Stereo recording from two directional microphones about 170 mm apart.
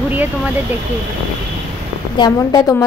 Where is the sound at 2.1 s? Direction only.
25° left (ahead or behind).